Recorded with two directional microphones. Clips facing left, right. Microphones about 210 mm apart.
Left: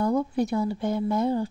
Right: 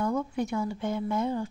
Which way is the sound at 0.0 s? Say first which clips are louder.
Left 5 dB; 35° left (ahead or behind).